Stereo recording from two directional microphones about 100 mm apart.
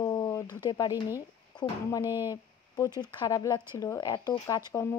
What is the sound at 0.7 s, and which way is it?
Speech, 45° left (ahead or behind).